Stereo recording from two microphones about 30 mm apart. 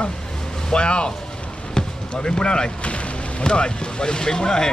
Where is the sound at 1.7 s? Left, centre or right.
Left.